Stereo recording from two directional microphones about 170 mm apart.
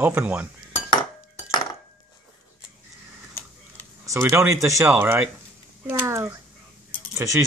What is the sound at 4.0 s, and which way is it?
Speech, 20° right (ahead or behind).